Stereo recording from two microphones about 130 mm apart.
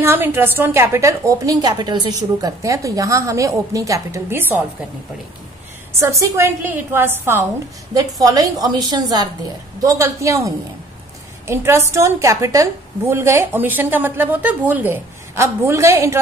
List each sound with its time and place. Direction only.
0.0 s a woman's voice: 20° right (ahead or behind)
5.9 s a woman's voice: 20° right (ahead or behind)
7.9 s a woman's voice: 30° right (ahead or behind)